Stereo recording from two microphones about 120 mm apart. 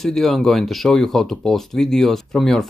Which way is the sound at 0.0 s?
5° left (ahead or behind).